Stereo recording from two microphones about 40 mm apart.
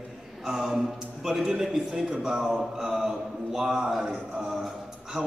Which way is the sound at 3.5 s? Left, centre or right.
Centre.